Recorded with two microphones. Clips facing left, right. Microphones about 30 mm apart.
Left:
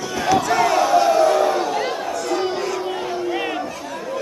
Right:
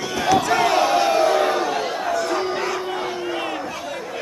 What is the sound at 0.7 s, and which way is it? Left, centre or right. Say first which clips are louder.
Crowd: left 2 dB; right.